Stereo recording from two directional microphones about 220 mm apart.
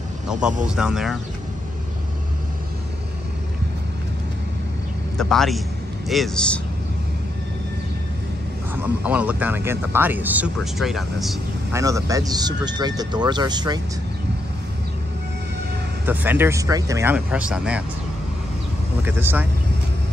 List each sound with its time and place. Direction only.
0.3 s speech: 5° right (ahead or behind)
5.1 s speech: centre (ahead or behind)
8.8 s speech: 5° right (ahead or behind)
11.7 s speech: 15° right (ahead or behind)
16.1 s speech: 10° right (ahead or behind)
19.0 s speech: 10° right (ahead or behind)